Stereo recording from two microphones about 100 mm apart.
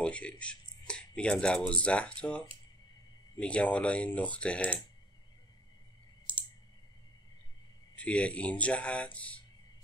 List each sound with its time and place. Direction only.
0.0 s speech: 10° left (ahead or behind)
6.3 s clicking: 60° right (ahead or behind)
7.9 s speech: 15° left (ahead or behind)